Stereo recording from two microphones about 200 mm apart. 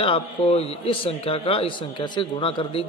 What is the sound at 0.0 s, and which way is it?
A man's voice, 30° left (ahead or behind).